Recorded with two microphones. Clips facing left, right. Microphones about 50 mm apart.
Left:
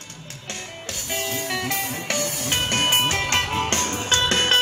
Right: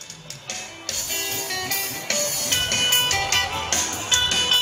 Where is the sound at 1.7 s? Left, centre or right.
Centre.